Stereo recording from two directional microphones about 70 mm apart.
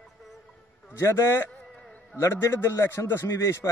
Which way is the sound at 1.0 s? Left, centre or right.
Left.